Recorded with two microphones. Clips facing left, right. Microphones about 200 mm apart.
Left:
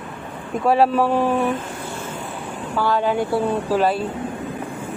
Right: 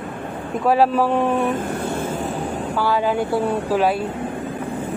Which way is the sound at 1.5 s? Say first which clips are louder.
Right 6 dB; 55° right (ahead or behind).